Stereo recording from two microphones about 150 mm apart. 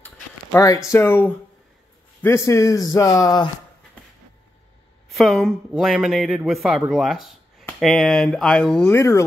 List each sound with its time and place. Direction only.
0.0 s speech: 15° left (ahead or behind)
5.1 s a man's voice: centre (ahead or behind)
8.8 s speech: 15° left (ahead or behind)